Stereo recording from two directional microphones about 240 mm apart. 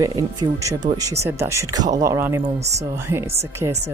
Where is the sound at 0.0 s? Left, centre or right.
Centre.